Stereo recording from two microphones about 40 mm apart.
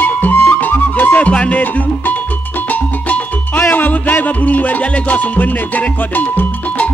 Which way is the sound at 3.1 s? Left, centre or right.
Left.